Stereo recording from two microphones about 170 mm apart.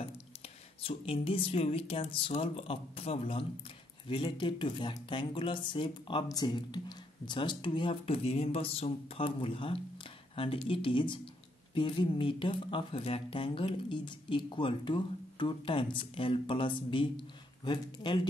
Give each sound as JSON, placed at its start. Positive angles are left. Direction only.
{"t": 0.8, "sound": "speech", "side_deg": 35}